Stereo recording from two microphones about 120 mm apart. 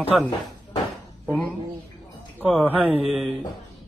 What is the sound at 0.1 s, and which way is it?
Speech, 5° right (ahead or behind).